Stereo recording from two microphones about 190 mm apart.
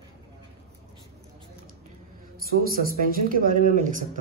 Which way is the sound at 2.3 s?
50° right (ahead or behind).